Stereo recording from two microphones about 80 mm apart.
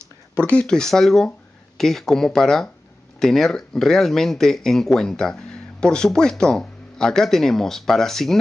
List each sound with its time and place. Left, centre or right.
0.4 s speech: centre